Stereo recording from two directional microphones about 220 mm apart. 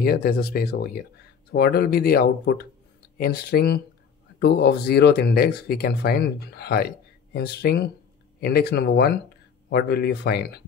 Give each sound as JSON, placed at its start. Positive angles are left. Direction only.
{"t": 0.0, "sound": "speech", "side_deg": 40}